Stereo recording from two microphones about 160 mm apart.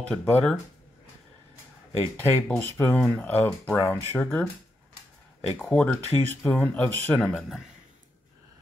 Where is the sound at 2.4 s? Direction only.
10° left (ahead or behind).